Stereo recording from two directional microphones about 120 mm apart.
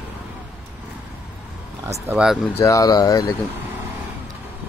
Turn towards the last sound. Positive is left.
turn(degrees=30)  # may be behind; listen again after turning